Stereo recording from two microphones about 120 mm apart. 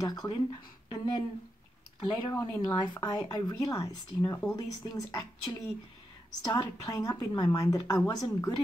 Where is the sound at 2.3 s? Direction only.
30° left (ahead or behind).